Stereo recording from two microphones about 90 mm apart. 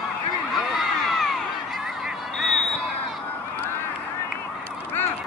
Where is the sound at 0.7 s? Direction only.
Centre (ahead or behind).